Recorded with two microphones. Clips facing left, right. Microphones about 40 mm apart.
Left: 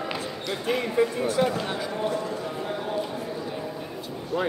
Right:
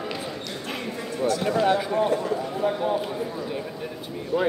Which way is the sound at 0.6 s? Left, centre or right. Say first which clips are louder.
Left 7 dB; centre.